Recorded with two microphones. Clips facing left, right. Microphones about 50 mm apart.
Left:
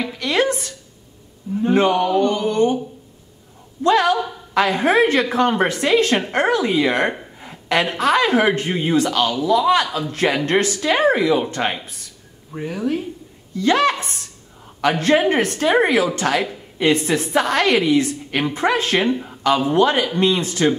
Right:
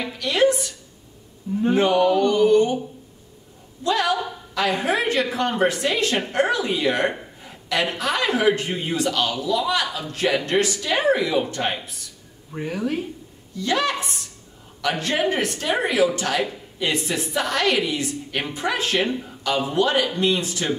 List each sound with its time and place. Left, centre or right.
0.2 s a sound: left
1.8 s a woman's voice: left
2.1 s mantra: left
3.8 s a sound: left
5.3 s a woman's voice: left
11.6 s speech: left
12.5 s speech: centre
13.6 s a woman's voice: left